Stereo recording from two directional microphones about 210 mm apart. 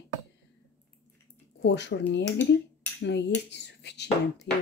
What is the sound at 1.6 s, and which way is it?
Speech, 55° left (ahead or behind).